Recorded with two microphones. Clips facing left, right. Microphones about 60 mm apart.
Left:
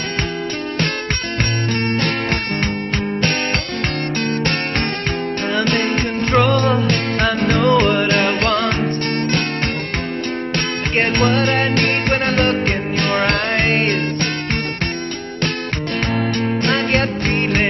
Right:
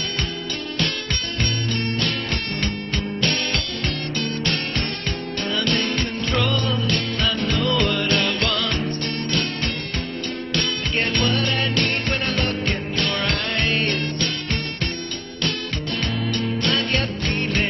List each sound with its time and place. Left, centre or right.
1.9 s music: left
4.4 s music: left
10.5 s music: left
16.2 s music: left